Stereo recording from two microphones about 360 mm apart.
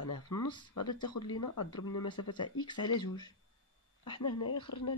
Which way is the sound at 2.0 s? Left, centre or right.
Centre.